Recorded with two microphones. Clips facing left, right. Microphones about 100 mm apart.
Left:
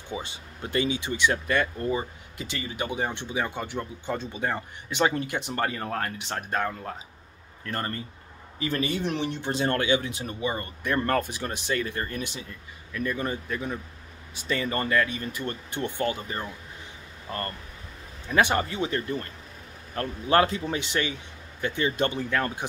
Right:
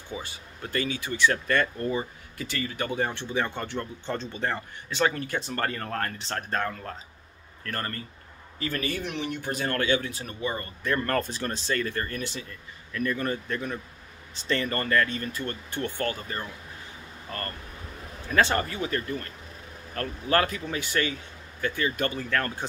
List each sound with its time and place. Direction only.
0.1 s speech: 20° left (ahead or behind)
9.0 s speech: 30° left (ahead or behind); by 22.7 s 15° left (ahead or behind)